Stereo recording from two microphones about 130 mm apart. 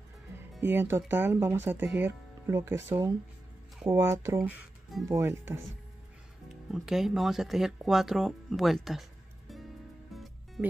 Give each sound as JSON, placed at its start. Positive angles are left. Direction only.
{"t": 0.6, "sound": "speech", "side_deg": -15}
{"t": 6.5, "sound": "speech", "side_deg": -5}
{"t": 10.1, "sound": "music", "side_deg": 0}